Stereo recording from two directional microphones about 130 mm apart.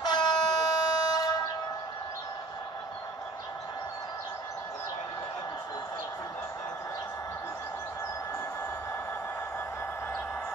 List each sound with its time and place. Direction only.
0.0 s air horn: 35° left (ahead or behind)